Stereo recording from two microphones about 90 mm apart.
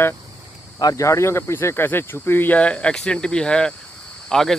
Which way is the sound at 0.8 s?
35° left (ahead or behind).